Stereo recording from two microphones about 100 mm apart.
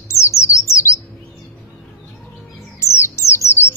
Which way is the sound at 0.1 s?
25° left (ahead or behind).